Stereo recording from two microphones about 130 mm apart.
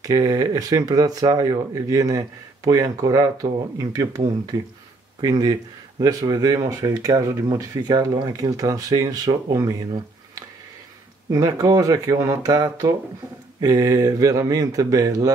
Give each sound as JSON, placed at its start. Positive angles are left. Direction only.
{"t": 0.0, "sound": "speech", "side_deg": -30}
{"t": 11.2, "sound": "speech", "side_deg": -25}